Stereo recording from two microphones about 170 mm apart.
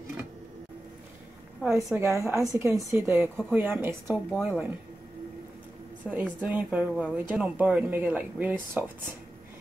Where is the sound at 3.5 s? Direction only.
10° right (ahead or behind).